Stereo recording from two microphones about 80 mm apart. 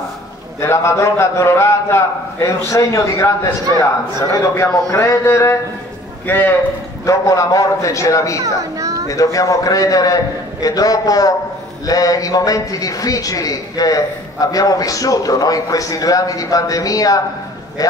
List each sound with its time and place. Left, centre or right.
0.6 s a man's voice: left
4.3 s a man's voice: left
7.1 s a man's voice: left
8.4 s a child's voice: right
9.1 s a man's voice: left